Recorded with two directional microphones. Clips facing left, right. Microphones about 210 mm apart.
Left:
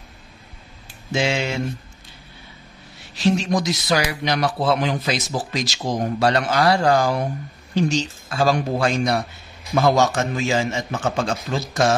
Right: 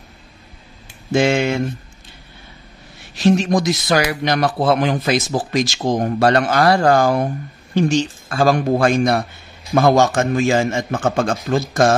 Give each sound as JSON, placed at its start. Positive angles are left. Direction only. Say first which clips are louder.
{"t": 1.1, "sound": "speech", "louder": "right 6 dB", "side_deg": -50}
{"t": 3.2, "sound": "speech", "louder": "right 4 dB", "side_deg": -50}